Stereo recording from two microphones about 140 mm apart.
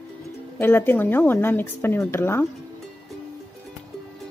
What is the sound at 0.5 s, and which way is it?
Speech, 15° left (ahead or behind).